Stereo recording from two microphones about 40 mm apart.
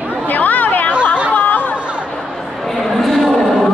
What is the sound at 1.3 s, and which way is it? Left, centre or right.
Chatter, left.